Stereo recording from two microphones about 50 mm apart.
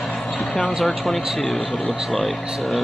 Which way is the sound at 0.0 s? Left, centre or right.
Centre.